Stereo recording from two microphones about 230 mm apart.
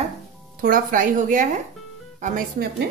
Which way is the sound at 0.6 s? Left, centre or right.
Right.